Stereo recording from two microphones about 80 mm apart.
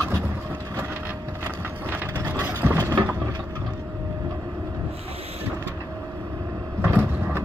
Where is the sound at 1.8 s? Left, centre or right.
Right.